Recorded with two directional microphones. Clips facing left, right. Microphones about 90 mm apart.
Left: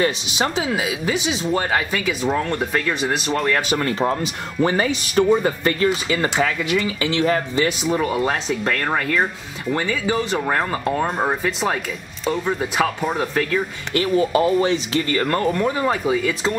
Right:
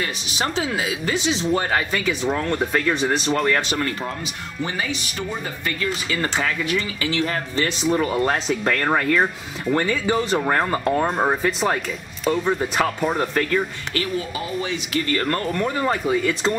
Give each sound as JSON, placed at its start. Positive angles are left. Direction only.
{"t": 0.4, "sound": "speech", "side_deg": 15}
{"t": 3.8, "sound": "speech", "side_deg": 30}
{"t": 4.6, "sound": "speech", "side_deg": 50}
{"t": 5.9, "sound": "speech", "side_deg": 20}
{"t": 7.6, "sound": "speech", "side_deg": 5}
{"t": 14.0, "sound": "speech", "side_deg": 40}
{"t": 14.9, "sound": "speech", "side_deg": 25}
{"t": 15.5, "sound": "speech", "side_deg": 5}